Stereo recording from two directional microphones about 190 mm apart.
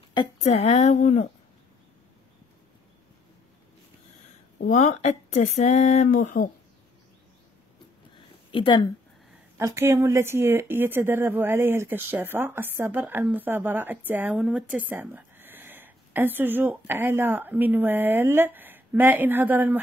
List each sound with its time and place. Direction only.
0.1 s speech: 30° left (ahead or behind)
4.6 s speech: 40° left (ahead or behind)
8.5 s speech: 25° left (ahead or behind)
9.6 s speech: 15° right (ahead or behind)